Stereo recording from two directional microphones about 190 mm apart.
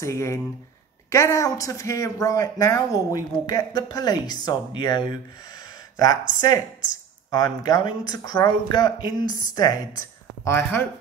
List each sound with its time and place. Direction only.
0.0 s speech: 15° left (ahead or behind)